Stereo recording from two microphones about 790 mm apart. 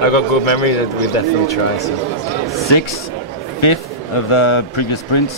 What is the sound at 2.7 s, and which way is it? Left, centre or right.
Speech, left.